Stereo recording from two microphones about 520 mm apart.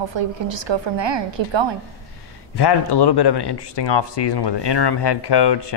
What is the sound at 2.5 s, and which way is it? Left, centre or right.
A man's voice, left.